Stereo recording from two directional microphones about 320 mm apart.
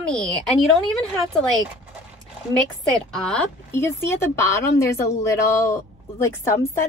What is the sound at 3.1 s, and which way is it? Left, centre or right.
Speech, centre.